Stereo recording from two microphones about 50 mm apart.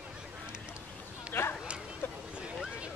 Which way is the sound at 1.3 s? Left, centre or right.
Left.